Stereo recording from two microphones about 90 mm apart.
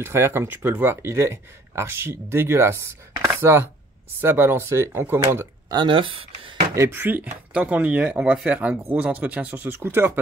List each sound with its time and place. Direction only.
0.0 s speech: 25° right (ahead or behind)
5.7 s speech: 60° right (ahead or behind)
6.7 s speech: 30° right (ahead or behind)